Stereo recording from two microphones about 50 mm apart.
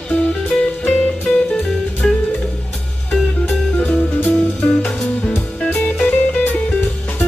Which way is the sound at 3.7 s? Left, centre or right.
Left.